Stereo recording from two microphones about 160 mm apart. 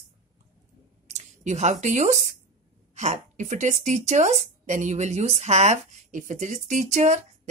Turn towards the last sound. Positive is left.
turn(degrees=-50)  # may be behind; listen again after turning